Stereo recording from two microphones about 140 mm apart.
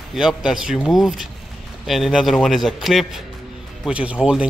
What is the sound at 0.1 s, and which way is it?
Speech, 5° right (ahead or behind).